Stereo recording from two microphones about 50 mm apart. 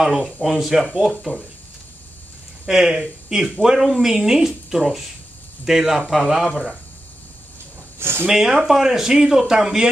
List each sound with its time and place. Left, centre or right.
0.0 s speech: centre
2.6 s speech: centre
8.0 s speech: right
8.3 s speech: centre